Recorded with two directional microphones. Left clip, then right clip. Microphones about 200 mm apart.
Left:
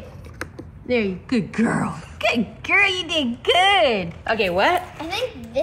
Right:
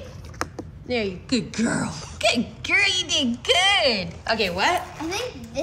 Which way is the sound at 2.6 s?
25° left (ahead or behind).